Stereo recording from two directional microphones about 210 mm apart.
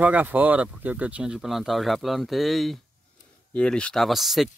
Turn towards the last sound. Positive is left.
turn(degrees=0)  # may be behind; listen again after turning